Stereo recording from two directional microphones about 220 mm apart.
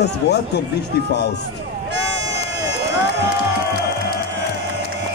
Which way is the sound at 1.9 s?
55° right (ahead or behind).